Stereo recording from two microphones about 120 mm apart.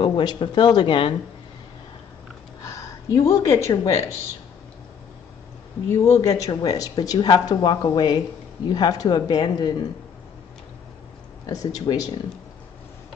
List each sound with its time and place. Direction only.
0.0 s speech: 40° left (ahead or behind)
2.6 s a woman's voice: 25° left (ahead or behind)
6.2 s speech: 30° left (ahead or behind)
11.4 s speech: 30° left (ahead or behind)